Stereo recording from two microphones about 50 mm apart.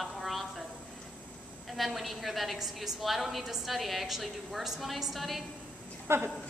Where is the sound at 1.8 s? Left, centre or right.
Centre.